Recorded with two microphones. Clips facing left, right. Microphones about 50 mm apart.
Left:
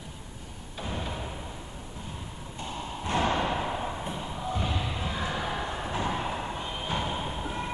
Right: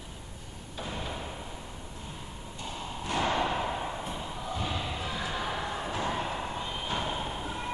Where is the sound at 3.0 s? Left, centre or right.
Left.